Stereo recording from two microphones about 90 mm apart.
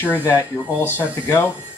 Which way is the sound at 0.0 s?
25° left (ahead or behind).